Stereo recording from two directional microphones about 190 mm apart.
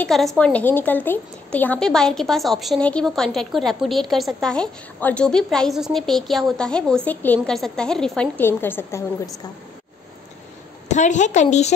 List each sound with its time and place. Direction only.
0.0 s a woman's voice: centre (ahead or behind)
10.9 s a woman's voice: 40° left (ahead or behind)